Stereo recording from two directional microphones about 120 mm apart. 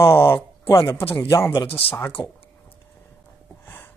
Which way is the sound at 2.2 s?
30° left (ahead or behind).